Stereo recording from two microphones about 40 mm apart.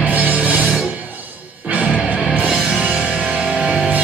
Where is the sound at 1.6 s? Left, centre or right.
Right.